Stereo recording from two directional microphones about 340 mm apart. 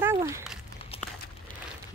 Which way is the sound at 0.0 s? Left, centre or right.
Centre.